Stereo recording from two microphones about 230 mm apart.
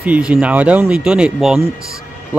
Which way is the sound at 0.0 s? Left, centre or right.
Centre.